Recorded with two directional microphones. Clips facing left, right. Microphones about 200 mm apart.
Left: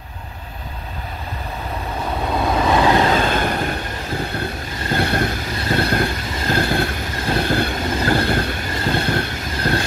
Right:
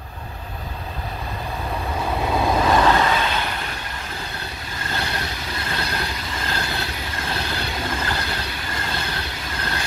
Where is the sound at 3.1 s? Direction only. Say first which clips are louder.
Left 5 dB; 50° left (ahead or behind).